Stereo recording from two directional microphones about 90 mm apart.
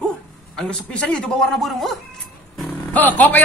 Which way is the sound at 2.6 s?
20° left (ahead or behind).